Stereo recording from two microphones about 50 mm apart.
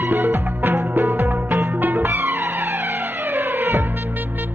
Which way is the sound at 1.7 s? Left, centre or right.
Right.